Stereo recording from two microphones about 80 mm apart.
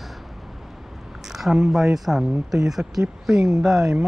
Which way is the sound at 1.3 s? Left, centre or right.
Centre.